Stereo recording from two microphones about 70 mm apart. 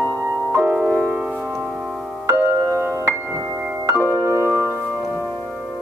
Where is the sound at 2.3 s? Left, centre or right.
Right.